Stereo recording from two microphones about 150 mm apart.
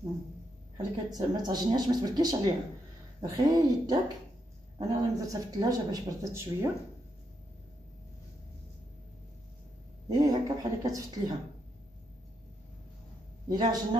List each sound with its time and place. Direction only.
0.7 s a man's voice: 25° right (ahead or behind)
10.0 s a man's voice: 25° right (ahead or behind)
13.5 s a man's voice: 25° right (ahead or behind)